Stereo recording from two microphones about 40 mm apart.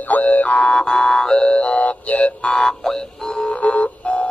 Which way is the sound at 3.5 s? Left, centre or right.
Left.